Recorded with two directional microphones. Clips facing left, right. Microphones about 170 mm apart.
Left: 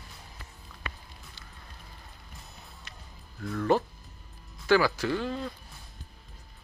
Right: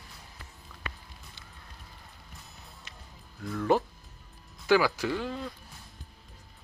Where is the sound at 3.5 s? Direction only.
5° right (ahead or behind).